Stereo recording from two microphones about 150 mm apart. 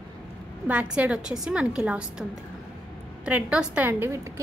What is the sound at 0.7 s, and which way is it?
A woman's voice, 10° right (ahead or behind).